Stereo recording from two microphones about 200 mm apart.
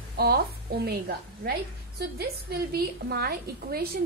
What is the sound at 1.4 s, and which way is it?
A woman's voice, 50° right (ahead or behind).